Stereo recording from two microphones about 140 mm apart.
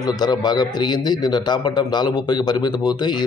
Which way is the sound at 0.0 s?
30° left (ahead or behind).